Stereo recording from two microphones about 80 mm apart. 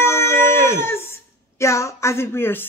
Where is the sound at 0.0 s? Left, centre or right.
Left.